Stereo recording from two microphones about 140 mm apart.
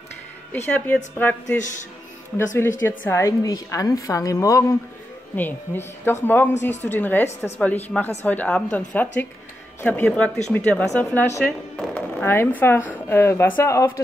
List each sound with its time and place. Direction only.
0.7 s a woman's voice: 10° left (ahead or behind)